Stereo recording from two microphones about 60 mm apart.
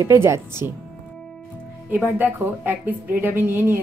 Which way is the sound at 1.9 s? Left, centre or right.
Right.